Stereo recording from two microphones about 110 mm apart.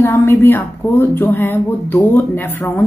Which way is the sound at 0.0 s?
20° left (ahead or behind).